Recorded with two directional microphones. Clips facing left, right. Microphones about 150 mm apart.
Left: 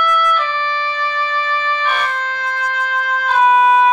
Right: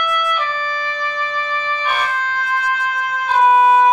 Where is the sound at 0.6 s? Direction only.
40° right (ahead or behind).